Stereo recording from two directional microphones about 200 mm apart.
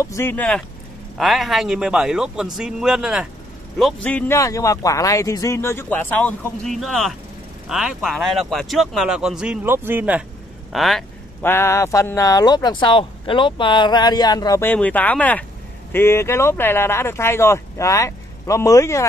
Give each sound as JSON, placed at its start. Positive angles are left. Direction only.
{"t": 0.0, "sound": "a man's voice", "side_deg": 15}
{"t": 11.4, "sound": "a man's voice", "side_deg": 10}